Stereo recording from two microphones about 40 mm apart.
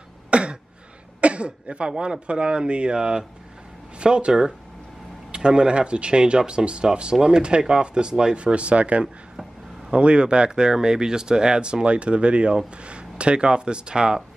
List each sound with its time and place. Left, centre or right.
0.3 s throat clearing: right
1.2 s speech: right
8.4 s speech: right